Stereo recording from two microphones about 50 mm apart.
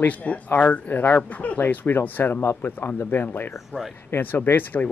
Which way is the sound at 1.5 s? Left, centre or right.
Left.